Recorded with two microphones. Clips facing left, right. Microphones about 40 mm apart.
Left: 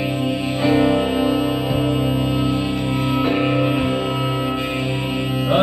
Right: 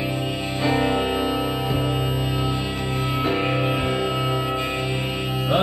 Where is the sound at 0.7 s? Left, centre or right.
Centre.